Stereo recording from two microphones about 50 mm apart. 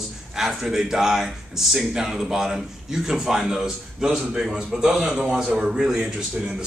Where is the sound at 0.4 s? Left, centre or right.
Centre.